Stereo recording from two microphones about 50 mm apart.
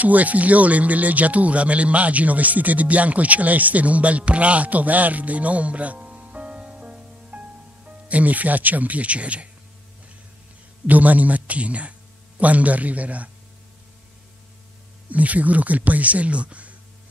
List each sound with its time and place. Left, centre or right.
0.0 s speech: right
10.9 s a man's voice: right
15.0 s speech: right